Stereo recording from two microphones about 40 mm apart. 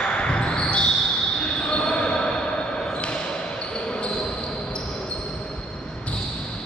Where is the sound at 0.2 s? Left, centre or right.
Left.